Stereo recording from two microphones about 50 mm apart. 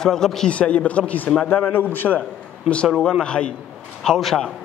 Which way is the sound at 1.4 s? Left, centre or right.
Left.